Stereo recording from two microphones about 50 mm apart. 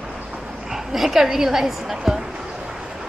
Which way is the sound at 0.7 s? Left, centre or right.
Centre.